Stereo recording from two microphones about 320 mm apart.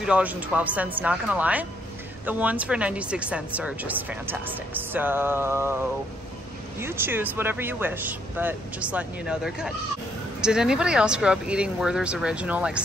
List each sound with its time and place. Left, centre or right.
0.0 s speech: centre
6.8 s speech: centre